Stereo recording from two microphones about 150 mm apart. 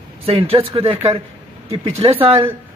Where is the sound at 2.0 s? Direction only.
40° right (ahead or behind).